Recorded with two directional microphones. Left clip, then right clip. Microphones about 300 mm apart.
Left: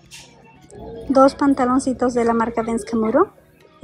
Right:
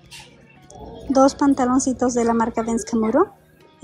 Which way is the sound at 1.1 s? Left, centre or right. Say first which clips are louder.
Left 2 dB; centre.